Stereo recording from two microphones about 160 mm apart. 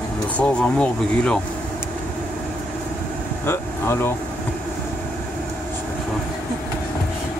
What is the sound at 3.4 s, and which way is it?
Speech, 15° left (ahead or behind).